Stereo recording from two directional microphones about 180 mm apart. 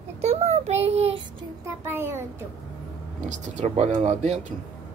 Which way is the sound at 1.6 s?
15° right (ahead or behind).